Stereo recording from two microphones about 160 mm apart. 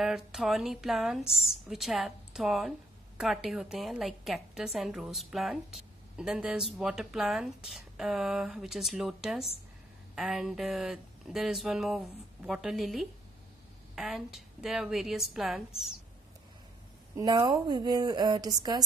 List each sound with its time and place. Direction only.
0.0 s a woman's voice: 5° right (ahead or behind)
17.2 s a woman's voice: 25° right (ahead or behind)